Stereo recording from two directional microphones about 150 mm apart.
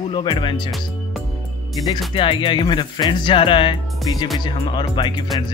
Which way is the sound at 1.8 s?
30° left (ahead or behind).